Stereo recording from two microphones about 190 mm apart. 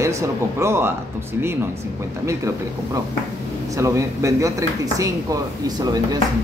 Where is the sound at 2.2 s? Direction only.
15° right (ahead or behind).